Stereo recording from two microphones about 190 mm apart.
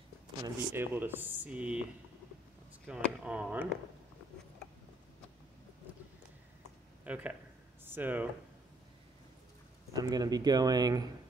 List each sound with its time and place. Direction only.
0.4 s speech: 10° right (ahead or behind)
2.9 s speech: 5° right (ahead or behind)
7.1 s speech: 10° right (ahead or behind)
9.9 s a man's voice: 20° right (ahead or behind)